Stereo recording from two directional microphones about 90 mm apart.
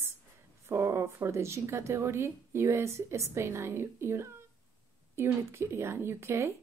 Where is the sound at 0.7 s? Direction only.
30° right (ahead or behind).